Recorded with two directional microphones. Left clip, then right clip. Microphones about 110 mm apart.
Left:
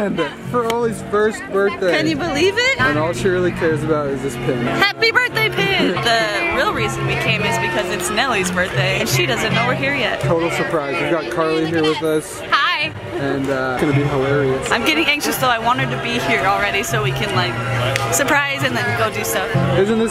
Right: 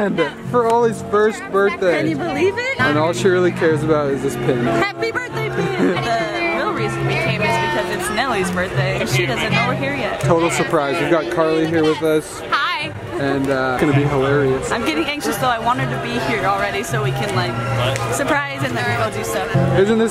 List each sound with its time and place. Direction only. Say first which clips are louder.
0.7 s speech: right 2 dB; 5° right (ahead or behind)
3.0 s speech: right 2 dB; 10° right (ahead or behind)
4.7 s music: left 5 dB; 20° left (ahead or behind)
7.7 s music: left 1 dB; 10° left (ahead or behind)
10.2 s speech: right 2 dB; 20° right (ahead or behind)
11.3 s speech: right 1 dB; 5° right (ahead or behind)
19.8 s speech: right 2 dB; 5° right (ahead or behind)